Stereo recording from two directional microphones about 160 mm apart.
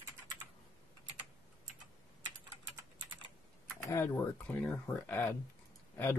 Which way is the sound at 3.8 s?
20° left (ahead or behind).